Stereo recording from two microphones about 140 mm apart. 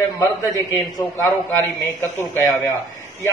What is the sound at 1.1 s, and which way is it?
A man's voice, 15° left (ahead or behind).